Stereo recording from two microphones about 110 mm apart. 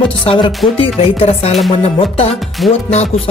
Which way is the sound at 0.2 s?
50° left (ahead or behind).